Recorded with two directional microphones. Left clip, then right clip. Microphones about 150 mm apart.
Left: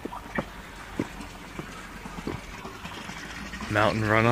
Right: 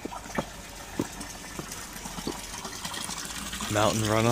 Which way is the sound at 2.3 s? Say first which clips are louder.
Even; 15° right (ahead or behind).